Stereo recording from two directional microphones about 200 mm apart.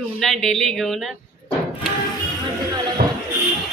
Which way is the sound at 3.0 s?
45° right (ahead or behind).